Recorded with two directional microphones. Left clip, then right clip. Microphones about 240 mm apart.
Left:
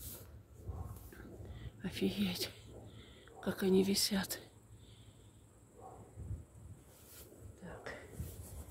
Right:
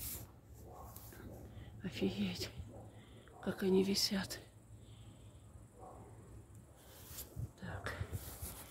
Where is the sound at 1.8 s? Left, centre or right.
Centre.